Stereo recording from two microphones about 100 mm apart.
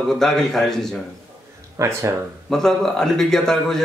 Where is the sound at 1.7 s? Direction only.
30° right (ahead or behind).